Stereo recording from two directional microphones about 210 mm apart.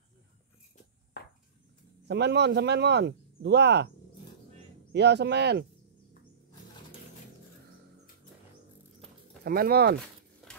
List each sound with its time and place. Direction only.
2.0 s speech: 55° right (ahead or behind)
4.9 s speech: 55° right (ahead or behind)
9.4 s speech: 45° right (ahead or behind)